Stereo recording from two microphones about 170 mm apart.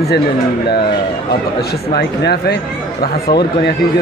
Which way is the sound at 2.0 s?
80° left.